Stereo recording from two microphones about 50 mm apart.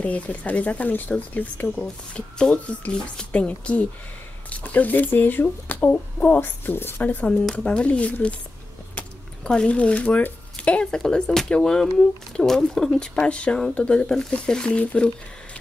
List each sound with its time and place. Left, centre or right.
0.0 s speech: left
1.8 s speech: centre; by 7.0 s left
7.0 s speech: left
9.4 s speech: centre
10.9 s speech: centre
13.3 s speech: left
14.8 s speech: left